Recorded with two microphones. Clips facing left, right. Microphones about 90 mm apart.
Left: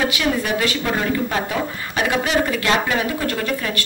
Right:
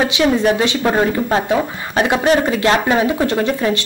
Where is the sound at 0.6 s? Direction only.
25° right (ahead or behind).